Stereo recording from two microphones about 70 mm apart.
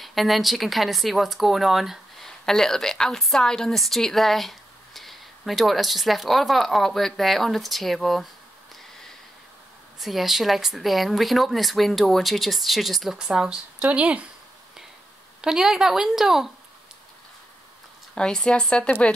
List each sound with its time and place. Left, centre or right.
0.0 s speech: centre
9.9 s speech: centre
13.7 s speech: centre
15.4 s speech: centre
18.1 s speech: centre